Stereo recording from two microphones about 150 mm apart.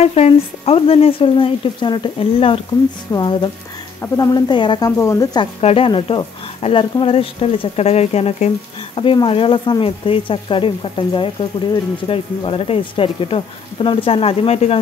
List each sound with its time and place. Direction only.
0.0 s speech: 45° left (ahead or behind); by 4.9 s 30° left (ahead or behind)
4.9 s speech: 20° left (ahead or behind)
5.6 s speech: 40° left (ahead or behind)